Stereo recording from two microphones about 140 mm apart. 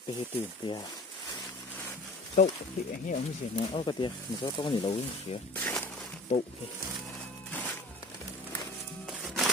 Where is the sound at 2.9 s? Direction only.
70° left (ahead or behind).